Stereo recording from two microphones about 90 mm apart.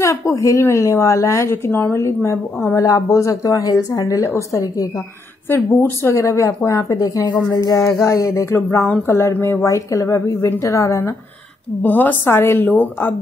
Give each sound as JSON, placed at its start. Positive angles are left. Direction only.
{"t": 0.0, "sound": "a woman's voice", "side_deg": 35}
{"t": 2.8, "sound": "a woman's voice", "side_deg": 40}
{"t": 7.4, "sound": "a sound", "side_deg": 40}
{"t": 8.1, "sound": "a woman's voice", "side_deg": 35}
{"t": 11.8, "sound": "a woman's voice", "side_deg": 20}